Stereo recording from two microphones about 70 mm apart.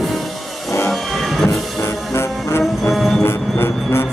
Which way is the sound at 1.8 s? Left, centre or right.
Left.